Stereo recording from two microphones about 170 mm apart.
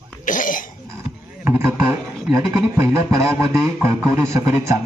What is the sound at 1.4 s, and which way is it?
A man's voice, 15° right (ahead or behind).